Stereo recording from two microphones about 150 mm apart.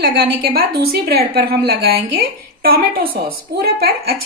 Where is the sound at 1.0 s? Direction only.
90° right.